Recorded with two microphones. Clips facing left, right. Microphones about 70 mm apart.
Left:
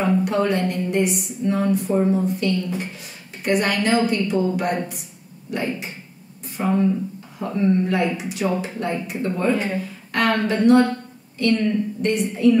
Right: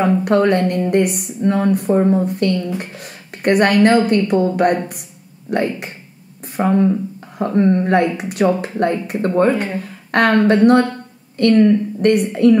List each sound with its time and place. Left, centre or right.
0.0 s a woman's voice: right
6.4 s a sound: right
7.3 s a woman's voice: right